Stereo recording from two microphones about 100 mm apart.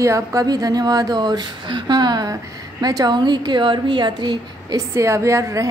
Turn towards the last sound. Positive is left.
turn(degrees=-30)  # may be behind; listen again after turning